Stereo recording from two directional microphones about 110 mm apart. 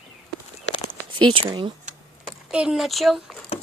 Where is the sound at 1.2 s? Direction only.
45° right (ahead or behind).